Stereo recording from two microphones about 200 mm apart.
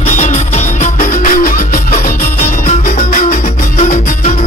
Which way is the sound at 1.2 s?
45° left (ahead or behind).